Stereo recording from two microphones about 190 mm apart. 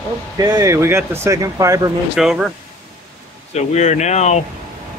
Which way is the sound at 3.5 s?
35° left (ahead or behind).